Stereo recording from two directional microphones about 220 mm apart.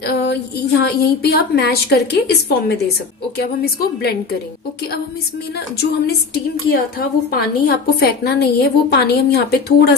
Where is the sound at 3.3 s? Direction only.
45° left (ahead or behind).